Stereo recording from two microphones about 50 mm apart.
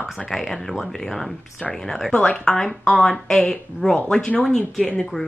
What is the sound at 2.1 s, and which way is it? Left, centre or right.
Speech, centre.